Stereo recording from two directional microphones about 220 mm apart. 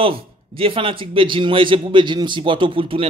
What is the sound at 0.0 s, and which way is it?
A man's voice, 25° right (ahead or behind).